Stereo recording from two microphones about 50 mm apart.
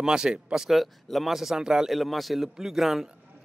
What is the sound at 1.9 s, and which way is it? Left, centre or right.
Speech, centre.